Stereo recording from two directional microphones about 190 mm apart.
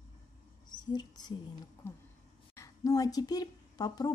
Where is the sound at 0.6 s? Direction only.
20° left (ahead or behind).